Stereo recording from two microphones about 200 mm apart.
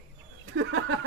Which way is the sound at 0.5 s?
65° right (ahead or behind).